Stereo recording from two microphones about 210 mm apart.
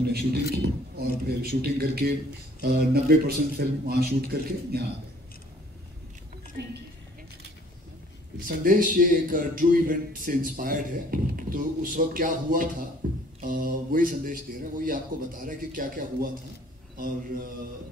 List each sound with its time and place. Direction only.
0.0 s a man's voice: 50° right (ahead or behind)
6.6 s a man's voice: 50° right (ahead or behind)
8.5 s a man's voice: 40° right (ahead or behind)